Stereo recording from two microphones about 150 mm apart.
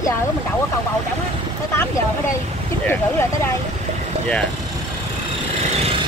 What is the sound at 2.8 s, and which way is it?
Speech, 15° left (ahead or behind).